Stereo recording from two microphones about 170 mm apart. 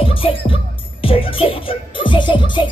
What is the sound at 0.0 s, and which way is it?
Music, 30° left (ahead or behind).